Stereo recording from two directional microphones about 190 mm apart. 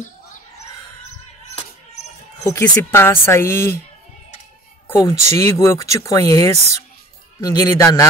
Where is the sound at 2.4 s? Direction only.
10° left (ahead or behind).